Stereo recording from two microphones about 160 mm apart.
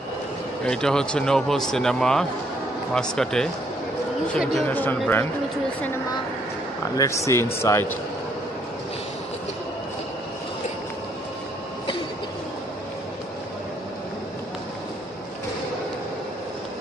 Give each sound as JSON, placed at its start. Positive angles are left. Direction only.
{"t": 0.7, "sound": "a man's voice", "side_deg": 5}
{"t": 7.0, "sound": "a man's voice", "side_deg": 20}